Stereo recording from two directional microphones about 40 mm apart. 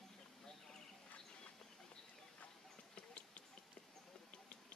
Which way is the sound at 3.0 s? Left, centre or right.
Left.